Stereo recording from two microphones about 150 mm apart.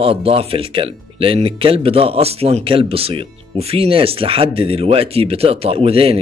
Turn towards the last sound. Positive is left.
turn(degrees=-40)  # may be behind; listen again after turning